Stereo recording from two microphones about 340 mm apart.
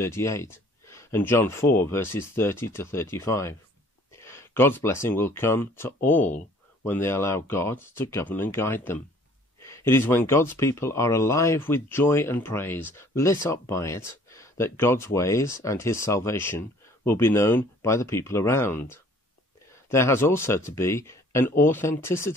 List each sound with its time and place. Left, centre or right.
0.0 s speech: centre